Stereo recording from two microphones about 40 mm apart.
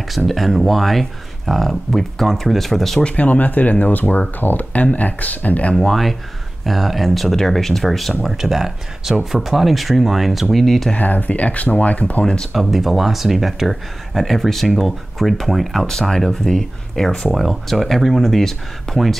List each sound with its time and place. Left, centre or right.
0.3 s speech: centre
3.2 s speech: left
5.8 s speech: centre
11.0 s speech: left
12.5 s speech: centre
17.3 s speech: centre